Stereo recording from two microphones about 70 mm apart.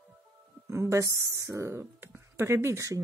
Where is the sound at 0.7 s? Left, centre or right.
Right.